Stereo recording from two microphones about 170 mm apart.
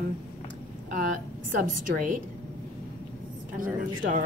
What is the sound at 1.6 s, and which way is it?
Speech, 55° right (ahead or behind).